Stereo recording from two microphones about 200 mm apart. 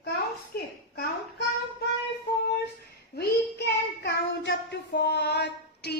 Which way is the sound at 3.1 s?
55° left (ahead or behind).